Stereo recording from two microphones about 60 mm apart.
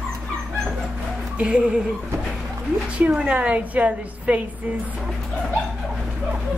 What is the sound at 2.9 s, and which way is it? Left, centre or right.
A woman's voice, centre.